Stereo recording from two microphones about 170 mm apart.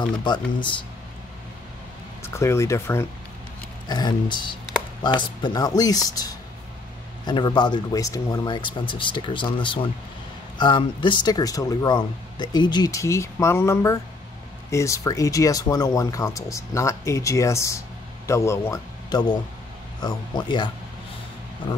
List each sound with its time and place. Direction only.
2.2 s speech: 15° left (ahead or behind)
3.9 s speech: 25° left (ahead or behind)